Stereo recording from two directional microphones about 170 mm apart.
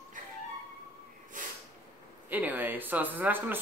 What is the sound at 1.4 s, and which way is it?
Snort, 50° right (ahead or behind).